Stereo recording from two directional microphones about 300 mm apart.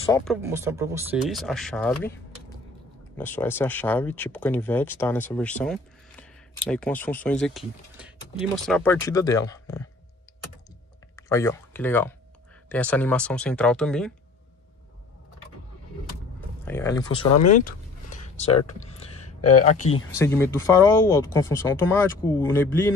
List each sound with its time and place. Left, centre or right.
0.0 s speech: centre
0.3 s speech: centre
3.2 s speech: centre
11.1 s speech: centre
16.6 s speech: centre
17.5 s a sound: left
19.5 s speech: left
20.4 s speech: centre